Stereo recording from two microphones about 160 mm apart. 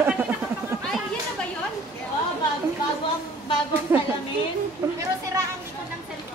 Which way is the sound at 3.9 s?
15° right (ahead or behind).